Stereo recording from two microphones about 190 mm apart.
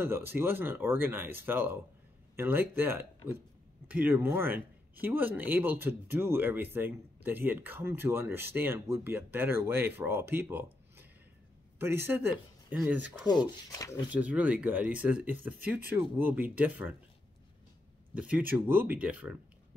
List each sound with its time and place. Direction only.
0.0 s speech: 10° right (ahead or behind)
10.4 s a sound: 10° right (ahead or behind)
11.8 s speech: 10° right (ahead or behind)
13.3 s speech: 20° left (ahead or behind)
14.1 s speech: 5° right (ahead or behind)
18.1 s speech: 5° right (ahead or behind)